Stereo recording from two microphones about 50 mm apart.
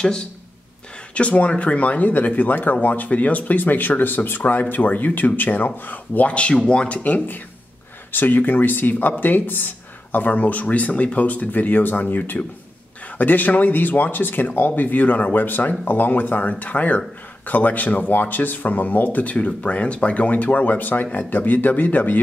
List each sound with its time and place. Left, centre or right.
1.1 s speech: left
7.0 s speech: left